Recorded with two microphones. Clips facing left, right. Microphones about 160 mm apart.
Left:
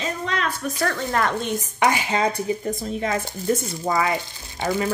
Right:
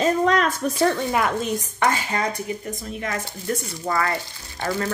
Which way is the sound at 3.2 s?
15° left (ahead or behind).